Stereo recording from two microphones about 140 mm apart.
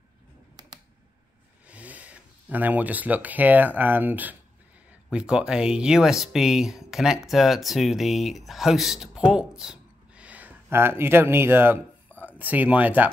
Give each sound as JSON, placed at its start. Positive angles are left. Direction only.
{"t": 1.7, "sound": "speech", "side_deg": -10}